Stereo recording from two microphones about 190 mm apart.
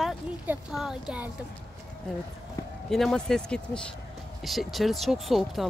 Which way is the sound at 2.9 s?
Centre (ahead or behind).